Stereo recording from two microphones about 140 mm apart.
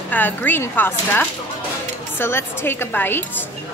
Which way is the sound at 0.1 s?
15° left (ahead or behind).